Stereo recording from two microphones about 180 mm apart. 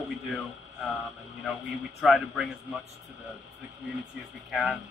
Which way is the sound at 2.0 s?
Centre (ahead or behind).